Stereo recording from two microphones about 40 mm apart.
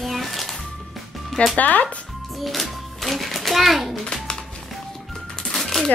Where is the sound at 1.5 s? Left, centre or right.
Left.